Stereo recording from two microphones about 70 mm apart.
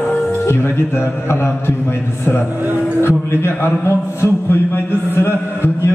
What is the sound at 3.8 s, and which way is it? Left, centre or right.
Music, left.